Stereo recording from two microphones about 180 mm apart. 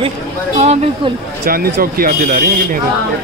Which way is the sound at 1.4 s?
55° right (ahead or behind).